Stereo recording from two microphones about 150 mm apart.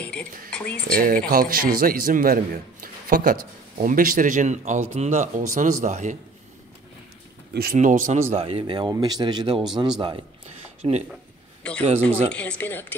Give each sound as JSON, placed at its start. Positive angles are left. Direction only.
{"t": 0.0, "sound": "speech", "side_deg": 5}
{"t": 0.9, "sound": "a man's voice", "side_deg": -70}
{"t": 7.7, "sound": "a man's voice", "side_deg": -55}
{"t": 10.8, "sound": "a man's voice", "side_deg": -45}
{"t": 12.3, "sound": "speech", "side_deg": 10}